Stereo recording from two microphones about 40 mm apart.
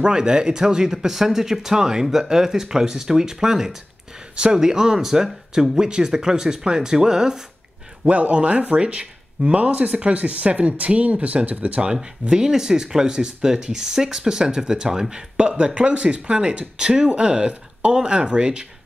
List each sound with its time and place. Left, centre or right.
0.0 s speech: right
8.1 s speech: right
11.9 s speech: right